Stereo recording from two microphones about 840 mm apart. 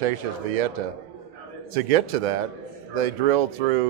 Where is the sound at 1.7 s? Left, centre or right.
Right.